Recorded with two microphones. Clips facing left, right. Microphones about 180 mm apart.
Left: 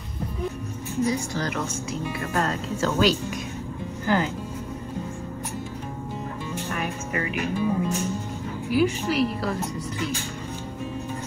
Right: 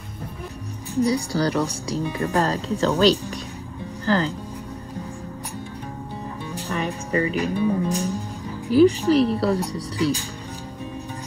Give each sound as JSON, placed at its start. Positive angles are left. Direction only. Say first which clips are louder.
{"t": 0.9, "sound": "speech", "louder": "right 4 dB", "side_deg": -35}
{"t": 6.5, "sound": "music", "louder": "right 4 dB", "side_deg": -35}
{"t": 7.3, "sound": "speech", "louder": "right 3 dB", "side_deg": -35}